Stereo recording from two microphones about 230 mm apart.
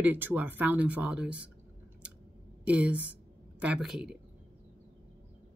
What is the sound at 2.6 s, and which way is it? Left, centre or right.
Speech, centre.